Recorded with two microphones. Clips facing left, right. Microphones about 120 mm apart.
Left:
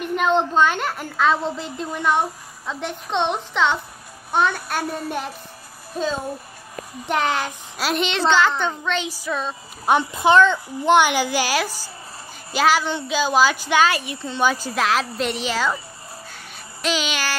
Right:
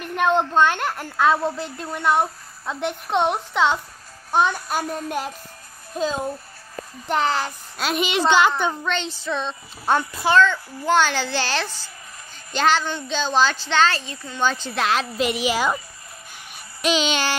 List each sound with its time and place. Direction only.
0.0 s a child's voice: centre (ahead or behind)
8.9 s a woman's voice: 10° left (ahead or behind)
14.1 s speech: 25° left (ahead or behind)
14.4 s a child's voice: 10° left (ahead or behind); by 15.8 s 15° right (ahead or behind)
16.8 s child singing: 25° right (ahead or behind)